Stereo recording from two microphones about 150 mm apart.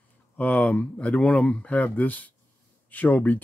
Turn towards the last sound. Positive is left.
turn(degrees=10)  # may be behind; listen again after turning